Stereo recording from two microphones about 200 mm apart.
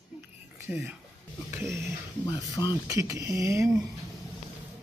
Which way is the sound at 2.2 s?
15° left (ahead or behind).